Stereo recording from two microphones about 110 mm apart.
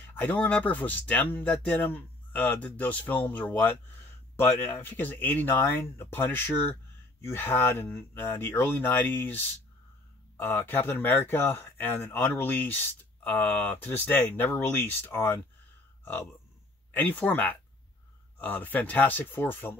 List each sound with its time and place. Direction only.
0.0 s speech: 15° left (ahead or behind)
16.9 s speech: 15° left (ahead or behind)